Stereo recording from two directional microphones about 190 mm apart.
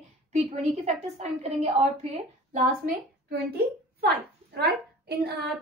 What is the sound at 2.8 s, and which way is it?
A woman's voice, 55° right (ahead or behind).